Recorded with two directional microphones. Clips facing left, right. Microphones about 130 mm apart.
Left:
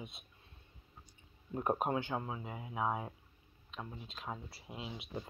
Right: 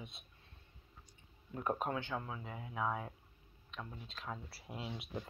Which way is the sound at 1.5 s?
20° left (ahead or behind).